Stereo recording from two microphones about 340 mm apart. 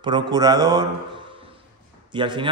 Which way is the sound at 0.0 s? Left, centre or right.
Centre.